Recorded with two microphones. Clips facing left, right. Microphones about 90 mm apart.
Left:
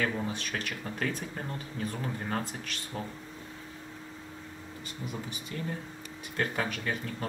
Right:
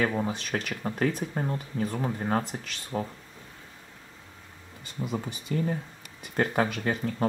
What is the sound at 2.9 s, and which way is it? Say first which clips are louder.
Speech: right 7 dB; 45° right (ahead or behind).